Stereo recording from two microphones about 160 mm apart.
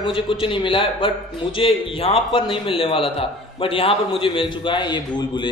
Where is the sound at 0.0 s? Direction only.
35° left (ahead or behind).